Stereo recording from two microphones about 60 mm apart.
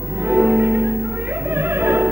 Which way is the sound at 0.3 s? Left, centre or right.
Right.